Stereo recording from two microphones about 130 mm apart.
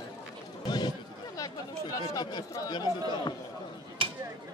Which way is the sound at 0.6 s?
35° left (ahead or behind).